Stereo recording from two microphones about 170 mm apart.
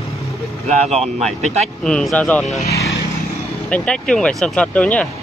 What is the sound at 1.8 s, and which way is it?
Speech, 5° left (ahead or behind).